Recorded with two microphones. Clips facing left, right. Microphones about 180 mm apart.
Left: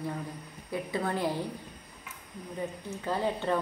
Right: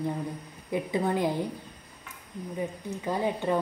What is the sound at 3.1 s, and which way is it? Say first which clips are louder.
Speech: right 2 dB; 15° right (ahead or behind).